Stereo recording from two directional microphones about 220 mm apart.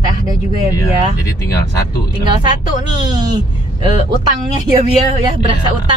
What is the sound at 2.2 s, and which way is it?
Speech, 20° right (ahead or behind).